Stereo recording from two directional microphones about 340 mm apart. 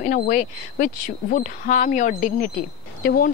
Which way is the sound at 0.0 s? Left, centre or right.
Left.